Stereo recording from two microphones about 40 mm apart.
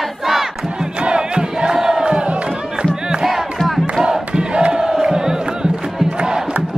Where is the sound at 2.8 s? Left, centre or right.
Right.